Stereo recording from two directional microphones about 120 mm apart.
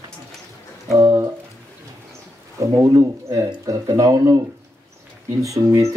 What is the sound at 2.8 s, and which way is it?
Speech, 25° right (ahead or behind).